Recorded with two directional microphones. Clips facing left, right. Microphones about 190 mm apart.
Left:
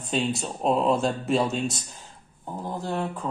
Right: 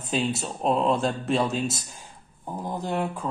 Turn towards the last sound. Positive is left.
turn(degrees=-10)  # may be behind; listen again after turning